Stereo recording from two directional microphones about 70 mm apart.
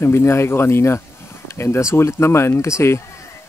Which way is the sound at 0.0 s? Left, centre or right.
Left.